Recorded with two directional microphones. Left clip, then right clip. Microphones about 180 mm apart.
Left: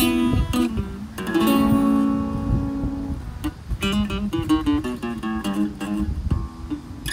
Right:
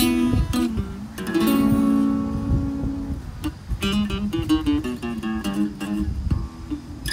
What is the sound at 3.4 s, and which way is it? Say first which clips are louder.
Music: left 1 dB; 10° left (ahead or behind).